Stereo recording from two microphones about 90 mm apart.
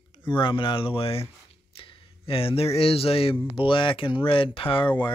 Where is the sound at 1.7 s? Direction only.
90° left.